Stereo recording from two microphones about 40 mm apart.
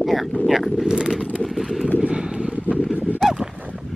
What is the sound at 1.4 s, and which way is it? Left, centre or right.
Speech, centre.